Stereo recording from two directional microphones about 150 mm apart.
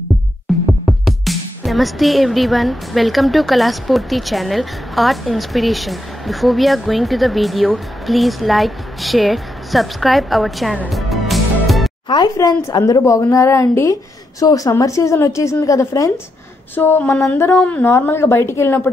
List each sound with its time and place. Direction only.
0.5 s music: centre (ahead or behind)
0.8 s speech: centre (ahead or behind)
10.9 s music: centre (ahead or behind)
12.1 s a woman's voice: 25° left (ahead or behind)